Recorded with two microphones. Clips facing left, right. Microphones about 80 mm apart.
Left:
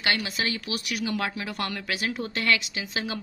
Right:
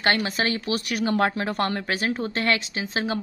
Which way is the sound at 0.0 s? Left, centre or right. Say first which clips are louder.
Right 5 dB; right.